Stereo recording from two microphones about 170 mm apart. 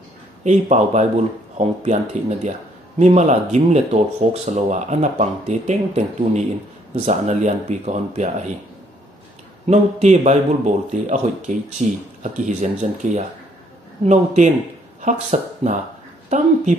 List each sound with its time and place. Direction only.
0.4 s speech: 45° right (ahead or behind)
9.7 s speech: 40° right (ahead or behind)